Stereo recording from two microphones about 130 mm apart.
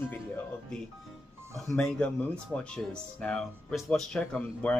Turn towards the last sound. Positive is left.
turn(degrees=5)  # may be behind; listen again after turning